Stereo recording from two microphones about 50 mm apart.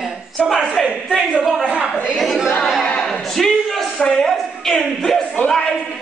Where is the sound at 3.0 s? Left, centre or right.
Centre.